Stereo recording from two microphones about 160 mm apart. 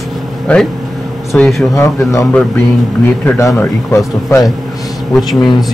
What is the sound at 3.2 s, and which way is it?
Speech, 15° left (ahead or behind).